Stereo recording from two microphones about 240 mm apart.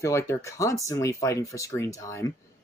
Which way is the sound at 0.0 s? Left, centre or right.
Centre.